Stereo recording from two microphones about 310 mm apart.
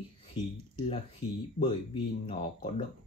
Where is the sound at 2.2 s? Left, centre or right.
Centre.